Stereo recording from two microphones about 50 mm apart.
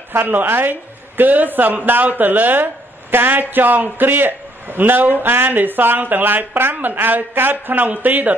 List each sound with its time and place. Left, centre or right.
0.2 s a woman's voice: right